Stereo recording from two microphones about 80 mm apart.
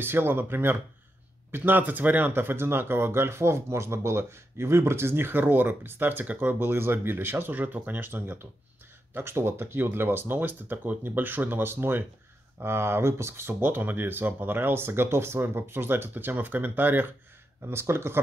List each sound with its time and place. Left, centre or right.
0.0 s speech: right